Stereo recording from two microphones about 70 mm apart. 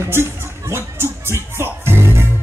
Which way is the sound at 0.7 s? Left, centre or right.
Right.